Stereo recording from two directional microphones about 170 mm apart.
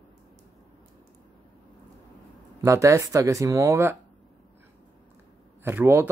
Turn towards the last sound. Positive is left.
turn(degrees=-15)  # may be behind; listen again after turning